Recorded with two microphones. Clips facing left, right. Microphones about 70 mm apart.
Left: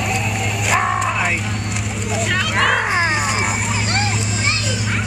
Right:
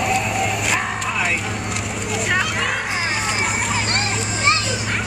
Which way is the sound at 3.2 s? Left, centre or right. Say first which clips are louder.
Left 2 dB; centre.